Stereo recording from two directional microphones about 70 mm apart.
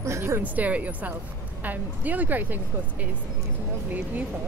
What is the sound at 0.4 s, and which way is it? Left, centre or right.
A woman's voice, right.